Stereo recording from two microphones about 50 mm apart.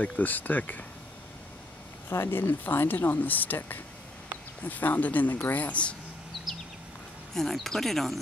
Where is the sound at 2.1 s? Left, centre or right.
Left.